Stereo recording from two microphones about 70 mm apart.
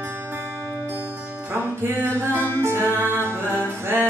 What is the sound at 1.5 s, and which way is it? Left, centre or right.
Music, right.